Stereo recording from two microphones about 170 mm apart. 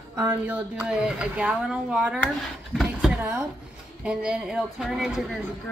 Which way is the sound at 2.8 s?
5° right (ahead or behind).